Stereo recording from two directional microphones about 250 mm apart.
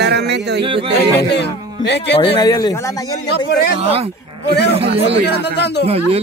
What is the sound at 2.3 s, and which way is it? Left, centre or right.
Speech, centre.